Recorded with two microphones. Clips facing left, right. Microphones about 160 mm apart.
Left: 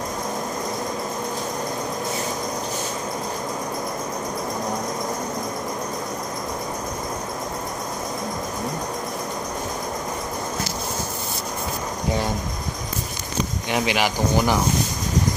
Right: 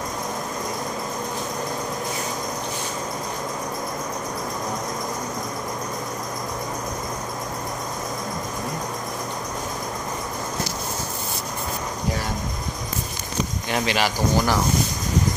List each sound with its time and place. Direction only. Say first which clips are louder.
13.7 s speech: left 1 dB; 15° left (ahead or behind)